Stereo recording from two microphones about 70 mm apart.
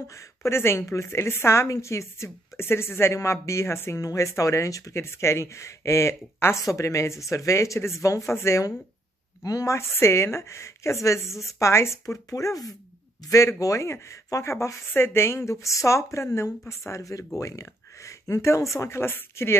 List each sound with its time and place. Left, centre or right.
0.1 s a woman's voice: left
9.4 s speech: left
9.8 s a woman's voice: left
12.3 s speech: left